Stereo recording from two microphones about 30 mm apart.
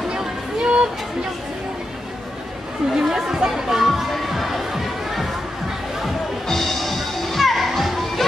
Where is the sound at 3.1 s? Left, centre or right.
Right.